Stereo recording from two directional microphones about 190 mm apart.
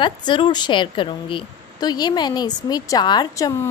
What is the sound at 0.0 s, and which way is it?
A woman's voice, 25° left (ahead or behind).